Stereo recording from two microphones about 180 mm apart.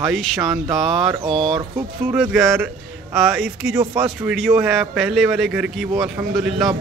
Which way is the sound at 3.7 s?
15° right (ahead or behind).